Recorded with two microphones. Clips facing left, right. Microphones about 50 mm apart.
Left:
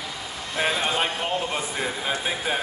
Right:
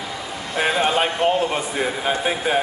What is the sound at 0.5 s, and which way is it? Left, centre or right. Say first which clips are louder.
A man's voice: right 5 dB; centre.